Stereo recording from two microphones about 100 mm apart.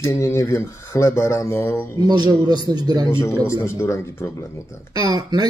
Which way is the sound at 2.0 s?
40° right (ahead or behind).